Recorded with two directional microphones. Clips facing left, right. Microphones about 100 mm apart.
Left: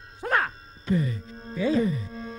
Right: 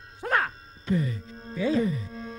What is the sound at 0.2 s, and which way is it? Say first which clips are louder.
Speech: left 1 dB; 30° left (ahead or behind).